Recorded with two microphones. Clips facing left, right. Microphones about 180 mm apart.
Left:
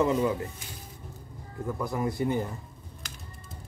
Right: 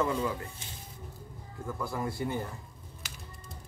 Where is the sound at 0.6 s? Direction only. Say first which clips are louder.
Left 3 dB; 25° right (ahead or behind).